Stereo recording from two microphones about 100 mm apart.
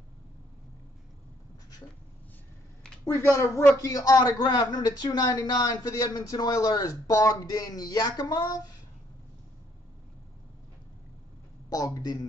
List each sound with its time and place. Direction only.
3.3 s speech: 30° left (ahead or behind)
11.7 s speech: 40° left (ahead or behind)